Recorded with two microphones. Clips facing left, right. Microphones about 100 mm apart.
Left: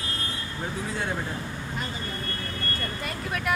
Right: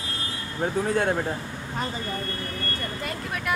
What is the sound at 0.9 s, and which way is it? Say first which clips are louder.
Speech: right 8 dB; 50° right (ahead or behind).